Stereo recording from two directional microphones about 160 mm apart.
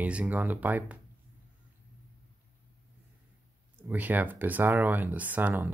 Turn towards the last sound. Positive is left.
turn(degrees=-10)  # may be behind; listen again after turning